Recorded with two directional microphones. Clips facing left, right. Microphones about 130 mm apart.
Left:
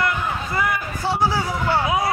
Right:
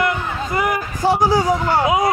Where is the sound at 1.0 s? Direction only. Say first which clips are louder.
Right 5 dB; 15° right (ahead or behind).